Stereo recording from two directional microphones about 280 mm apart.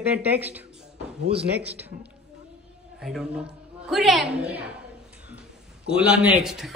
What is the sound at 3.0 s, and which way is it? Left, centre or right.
Speech, centre.